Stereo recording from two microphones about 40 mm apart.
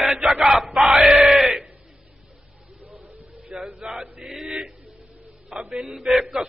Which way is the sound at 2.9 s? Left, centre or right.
Right.